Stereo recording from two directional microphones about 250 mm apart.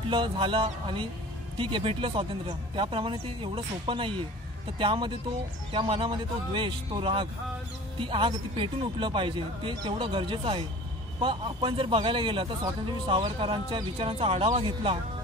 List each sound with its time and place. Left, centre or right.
0.1 s speech: centre